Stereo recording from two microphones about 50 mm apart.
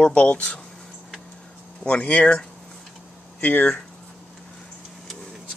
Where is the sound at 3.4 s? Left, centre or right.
Left.